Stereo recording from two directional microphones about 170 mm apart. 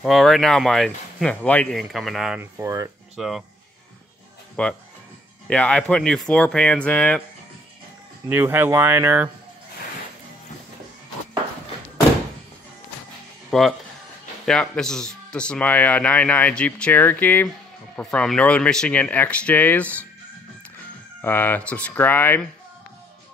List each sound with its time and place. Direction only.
0.0 s speech: centre (ahead or behind)
2.6 s speech: 20° right (ahead or behind)
3.2 s speech: centre (ahead or behind)
4.6 s speech: 5° left (ahead or behind)
8.3 s speech: 10° right (ahead or behind)
13.5 s speech: centre (ahead or behind)
21.2 s speech: 10° left (ahead or behind)